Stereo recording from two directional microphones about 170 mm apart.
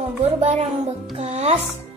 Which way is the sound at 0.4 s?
40° right (ahead or behind).